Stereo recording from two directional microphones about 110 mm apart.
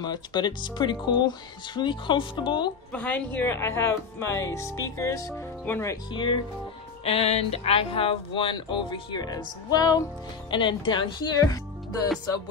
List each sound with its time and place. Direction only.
0.0 s speech: 40° left (ahead or behind)
2.9 s speech: 15° left (ahead or behind)
7.1 s speech: 70° left (ahead or behind); by 10.0 s 35° left (ahead or behind)
10.5 s speech: 45° left (ahead or behind)
11.3 s speech: 35° left (ahead or behind)